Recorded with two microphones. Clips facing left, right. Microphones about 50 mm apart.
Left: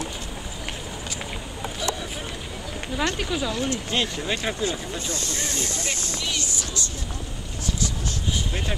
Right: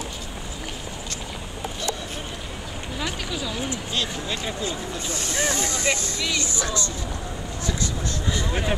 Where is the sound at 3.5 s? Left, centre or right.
Centre.